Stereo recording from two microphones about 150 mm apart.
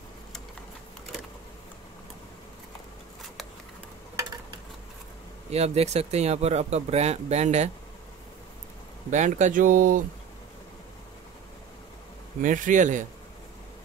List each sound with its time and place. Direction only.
5.5 s speech: 45° right (ahead or behind)
9.1 s speech: 55° right (ahead or behind)
12.4 s speech: 60° right (ahead or behind)